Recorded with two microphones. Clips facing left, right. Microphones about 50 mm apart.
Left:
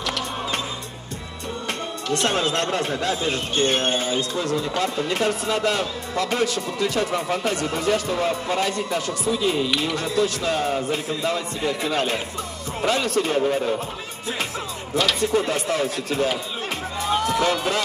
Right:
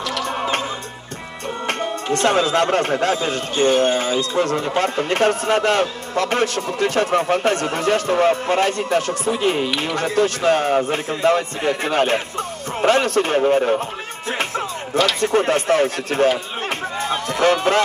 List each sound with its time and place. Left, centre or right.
0.2 s music: right
2.1 s a man's voice: right
3.6 s speech: left
4.4 s a man's voice: right
15.1 s speech: right
17.0 s run: right